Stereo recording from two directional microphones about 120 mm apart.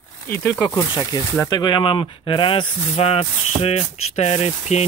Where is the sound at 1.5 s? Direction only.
40° left (ahead or behind).